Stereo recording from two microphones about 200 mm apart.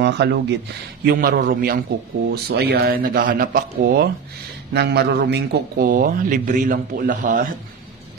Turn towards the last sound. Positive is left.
turn(degrees=-40)  # may be behind; listen again after turning